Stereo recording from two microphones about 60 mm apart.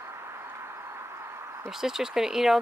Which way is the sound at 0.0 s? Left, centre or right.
Right.